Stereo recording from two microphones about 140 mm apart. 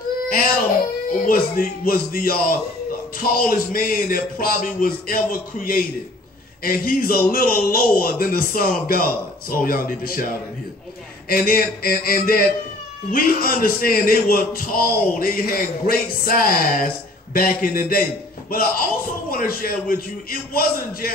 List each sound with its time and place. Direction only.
1.2 s speech: 85° left